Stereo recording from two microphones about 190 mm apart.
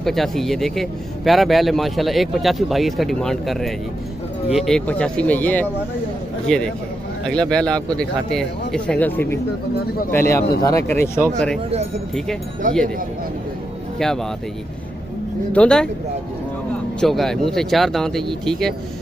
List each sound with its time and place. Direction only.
0.0 s speech: centre (ahead or behind)
12.6 s speech: 45° right (ahead or behind)
13.9 s speech: centre (ahead or behind)
15.5 s speech: 5° left (ahead or behind)
17.0 s speech: centre (ahead or behind)